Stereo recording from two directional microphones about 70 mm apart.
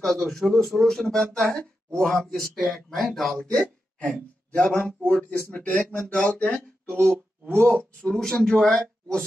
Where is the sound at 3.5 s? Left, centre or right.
Centre.